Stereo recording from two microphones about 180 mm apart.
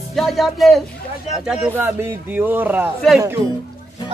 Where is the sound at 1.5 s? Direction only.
10° right (ahead or behind).